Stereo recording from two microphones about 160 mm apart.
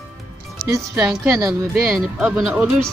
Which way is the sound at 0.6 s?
20° right (ahead or behind).